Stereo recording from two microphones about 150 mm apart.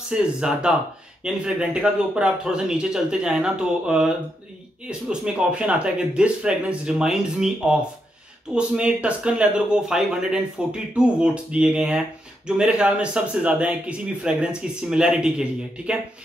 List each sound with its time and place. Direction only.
0.1 s speech: 5° right (ahead or behind)